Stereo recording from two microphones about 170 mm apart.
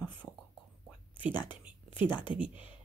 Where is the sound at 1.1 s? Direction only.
10° right (ahead or behind).